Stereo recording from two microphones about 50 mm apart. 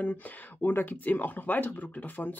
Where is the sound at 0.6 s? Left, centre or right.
Left.